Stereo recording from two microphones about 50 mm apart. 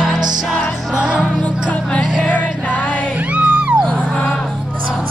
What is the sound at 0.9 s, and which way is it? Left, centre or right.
Music, right.